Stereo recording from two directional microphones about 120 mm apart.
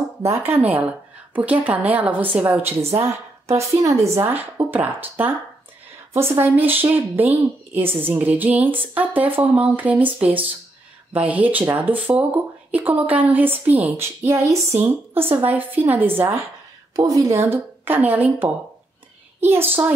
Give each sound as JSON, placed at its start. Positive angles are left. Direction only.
{"t": 0.5, "sound": "a woman's voice", "side_deg": -15}
{"t": 16.9, "sound": "a woman's voice", "side_deg": -30}